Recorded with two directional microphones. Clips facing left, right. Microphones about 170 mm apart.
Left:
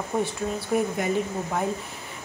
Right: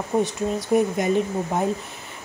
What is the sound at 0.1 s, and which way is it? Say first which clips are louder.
Speech: right 5 dB; 25° right (ahead or behind).